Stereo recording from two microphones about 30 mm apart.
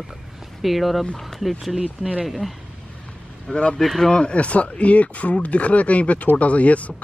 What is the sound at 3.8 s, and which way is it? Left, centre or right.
Speech, centre.